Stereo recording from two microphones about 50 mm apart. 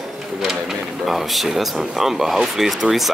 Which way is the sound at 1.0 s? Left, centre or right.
Centre.